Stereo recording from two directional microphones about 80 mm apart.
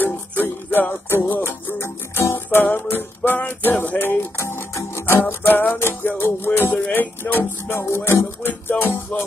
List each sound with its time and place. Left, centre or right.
0.0 s music: left